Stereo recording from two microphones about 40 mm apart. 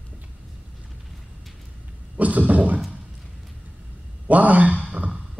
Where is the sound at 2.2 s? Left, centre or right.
Right.